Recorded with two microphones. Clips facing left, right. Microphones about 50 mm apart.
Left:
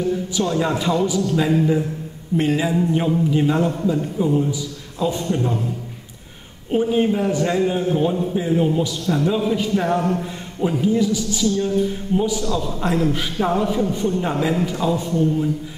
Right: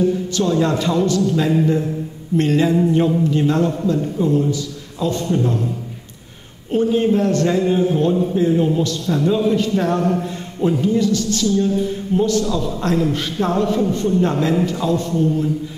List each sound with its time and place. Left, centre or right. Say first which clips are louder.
0.4 s a man's voice: right 3 dB; centre
6.7 s a man's voice: right 2 dB; centre